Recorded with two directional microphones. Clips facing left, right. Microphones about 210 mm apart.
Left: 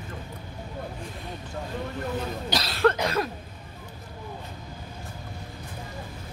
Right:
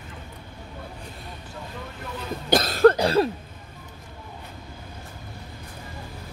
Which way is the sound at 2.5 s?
45° right (ahead or behind).